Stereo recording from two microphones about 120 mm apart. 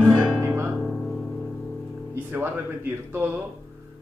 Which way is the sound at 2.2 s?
15° right (ahead or behind).